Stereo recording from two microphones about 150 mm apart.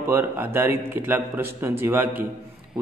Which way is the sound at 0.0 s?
15° right (ahead or behind).